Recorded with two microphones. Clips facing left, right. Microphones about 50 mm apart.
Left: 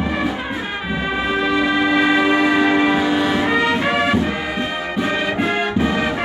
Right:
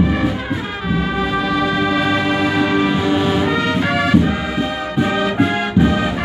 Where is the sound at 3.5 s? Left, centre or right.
Centre.